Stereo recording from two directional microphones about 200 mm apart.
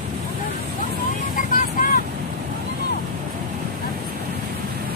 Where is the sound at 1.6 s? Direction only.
45° left (ahead or behind).